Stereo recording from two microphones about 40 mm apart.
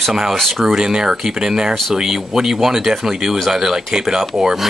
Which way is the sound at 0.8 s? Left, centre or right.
Centre.